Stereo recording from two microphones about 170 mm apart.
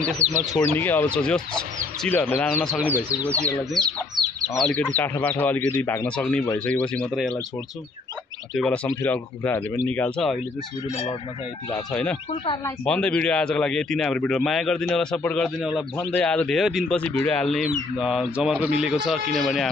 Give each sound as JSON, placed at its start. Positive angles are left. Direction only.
{"t": 0.0, "sound": "speech", "side_deg": -40}
{"t": 0.7, "sound": "speech", "side_deg": 10}
{"t": 2.8, "sound": "speech", "side_deg": -10}
{"t": 3.3, "sound": "speech", "side_deg": 5}
{"t": 3.8, "sound": "speech", "side_deg": -25}
{"t": 4.7, "sound": "speech", "side_deg": 10}
{"t": 8.5, "sound": "speech", "side_deg": 5}
{"t": 11.9, "sound": "speech", "side_deg": 10}